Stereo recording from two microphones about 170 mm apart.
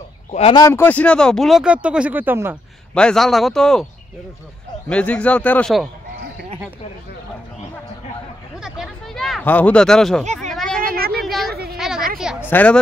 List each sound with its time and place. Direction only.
0.3 s speech: 35° left (ahead or behind)
0.6 s speech: 15° left (ahead or behind); by 2.5 s 10° right (ahead or behind)
2.9 s speech: 5° left (ahead or behind)
4.8 s a man's voice: 5° left (ahead or behind)
8.5 s a sound: 5° right (ahead or behind)
12.4 s speech: 10° left (ahead or behind)